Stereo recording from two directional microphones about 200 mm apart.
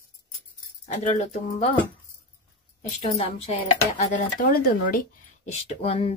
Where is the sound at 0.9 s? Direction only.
35° left (ahead or behind).